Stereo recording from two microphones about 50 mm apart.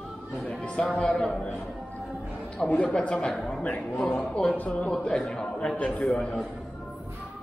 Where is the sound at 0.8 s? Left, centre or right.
Centre.